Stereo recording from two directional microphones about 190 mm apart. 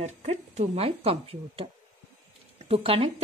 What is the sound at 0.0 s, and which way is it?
A woman's voice, 35° right (ahead or behind).